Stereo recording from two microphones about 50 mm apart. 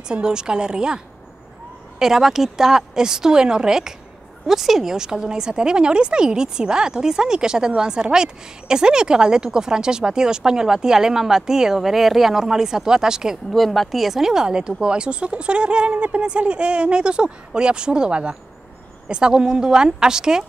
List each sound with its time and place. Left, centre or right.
0.1 s speech: centre
13.5 s speech: centre